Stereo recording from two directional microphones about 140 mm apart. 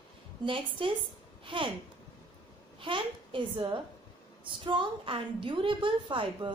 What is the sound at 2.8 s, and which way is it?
A woman's voice, 35° right (ahead or behind).